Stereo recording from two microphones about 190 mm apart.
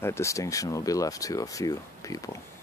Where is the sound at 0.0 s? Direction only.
15° left (ahead or behind).